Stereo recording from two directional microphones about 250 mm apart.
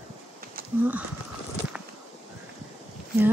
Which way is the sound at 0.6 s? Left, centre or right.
Right.